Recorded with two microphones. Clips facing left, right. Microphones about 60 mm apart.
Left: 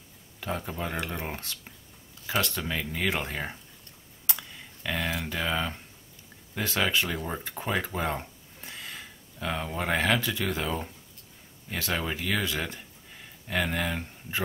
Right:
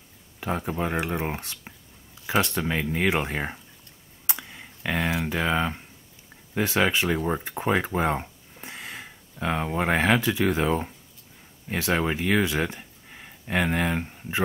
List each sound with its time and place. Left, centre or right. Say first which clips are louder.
0.4 s speech: right 5 dB; right
4.3 s clicking: right 3 dB; right
5.2 s speech: right 5 dB; right
10.0 s speech: right 4 dB; centre
10.4 s speech: right 7 dB; right